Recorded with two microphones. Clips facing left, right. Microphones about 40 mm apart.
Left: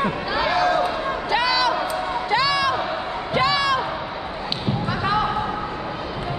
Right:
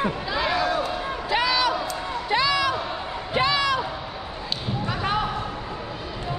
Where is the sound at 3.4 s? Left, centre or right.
Left.